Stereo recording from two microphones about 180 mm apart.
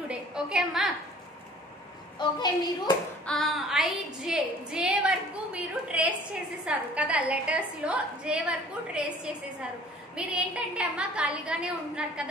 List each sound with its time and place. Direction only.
0.1 s a woman's voice: 5° right (ahead or behind)
2.1 s a woman's voice: 25° left (ahead or behind)
3.3 s a woman's voice: centre (ahead or behind)